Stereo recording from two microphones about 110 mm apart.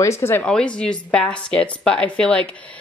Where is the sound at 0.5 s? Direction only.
10° left (ahead or behind).